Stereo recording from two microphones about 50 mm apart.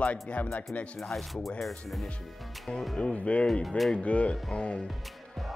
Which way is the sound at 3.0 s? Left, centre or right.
Left.